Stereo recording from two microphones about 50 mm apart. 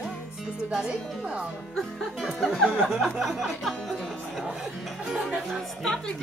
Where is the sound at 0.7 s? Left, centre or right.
Centre.